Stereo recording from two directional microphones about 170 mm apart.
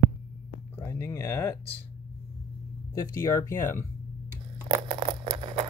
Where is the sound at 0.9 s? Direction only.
15° left (ahead or behind).